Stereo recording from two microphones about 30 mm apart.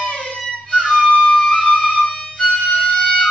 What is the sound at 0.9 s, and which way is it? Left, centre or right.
Flute, left.